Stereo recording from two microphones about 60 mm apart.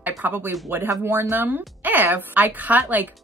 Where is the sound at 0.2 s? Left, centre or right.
Right.